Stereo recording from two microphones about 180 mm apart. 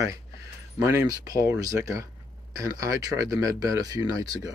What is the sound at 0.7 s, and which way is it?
Speech, 20° right (ahead or behind).